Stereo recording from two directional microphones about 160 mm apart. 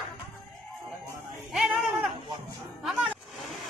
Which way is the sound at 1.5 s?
Centre (ahead or behind).